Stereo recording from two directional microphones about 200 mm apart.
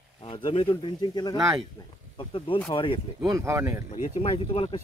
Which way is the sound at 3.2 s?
15° right (ahead or behind).